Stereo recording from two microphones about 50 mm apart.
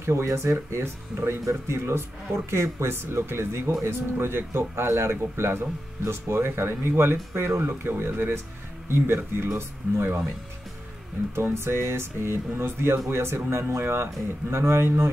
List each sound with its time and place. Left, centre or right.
0.0 s speech: right
2.9 s speech: right
5.4 s speech: right
11.5 s speech: right